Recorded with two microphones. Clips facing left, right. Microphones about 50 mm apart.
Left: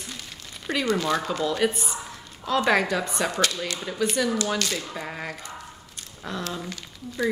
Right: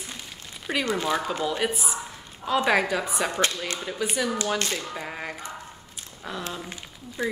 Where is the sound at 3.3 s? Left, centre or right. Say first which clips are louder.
Even; right.